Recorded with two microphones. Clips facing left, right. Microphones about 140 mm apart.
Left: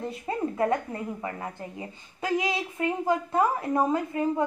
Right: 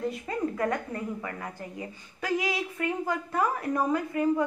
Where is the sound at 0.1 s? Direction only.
25° left (ahead or behind).